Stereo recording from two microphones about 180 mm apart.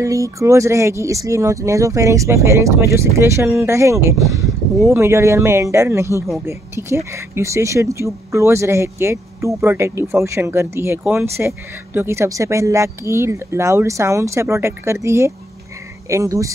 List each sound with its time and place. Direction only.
0.0 s speech: 15° right (ahead or behind)